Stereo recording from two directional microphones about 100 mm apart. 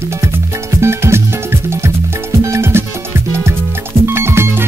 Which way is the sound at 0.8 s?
25° right (ahead or behind).